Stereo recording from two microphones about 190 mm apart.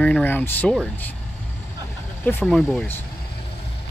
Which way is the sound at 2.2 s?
10° left (ahead or behind).